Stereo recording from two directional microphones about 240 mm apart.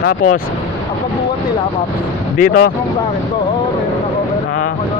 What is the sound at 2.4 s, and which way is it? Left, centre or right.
Speech, left.